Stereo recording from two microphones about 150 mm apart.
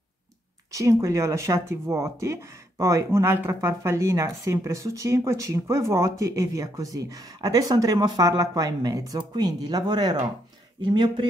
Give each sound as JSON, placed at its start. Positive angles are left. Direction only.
{"t": 0.7, "sound": "speech", "side_deg": -20}